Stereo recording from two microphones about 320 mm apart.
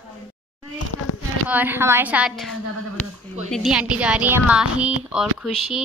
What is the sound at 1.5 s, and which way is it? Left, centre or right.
A woman's voice, centre.